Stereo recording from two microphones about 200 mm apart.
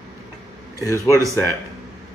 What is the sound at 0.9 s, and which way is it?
Speech, 15° left (ahead or behind).